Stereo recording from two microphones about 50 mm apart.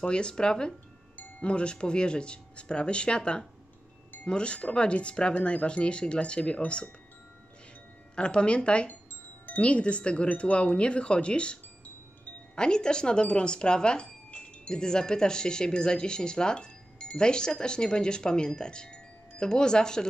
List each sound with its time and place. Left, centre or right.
0.0 s speech: centre
8.2 s speech: centre
12.5 s speech: centre